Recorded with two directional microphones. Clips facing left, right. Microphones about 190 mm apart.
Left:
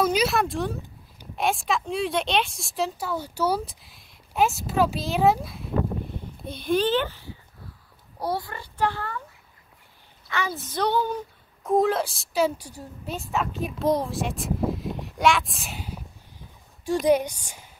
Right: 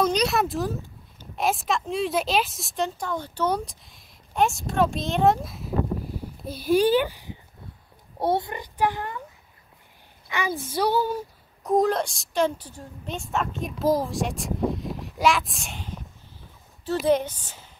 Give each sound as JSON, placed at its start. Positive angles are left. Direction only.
{"t": 0.0, "sound": "a sound", "side_deg": 5}
{"t": 1.3, "sound": "a woman's voice", "side_deg": 0}
{"t": 10.2, "sound": "a woman's voice", "side_deg": -15}
{"t": 17.0, "sound": "speech", "side_deg": 15}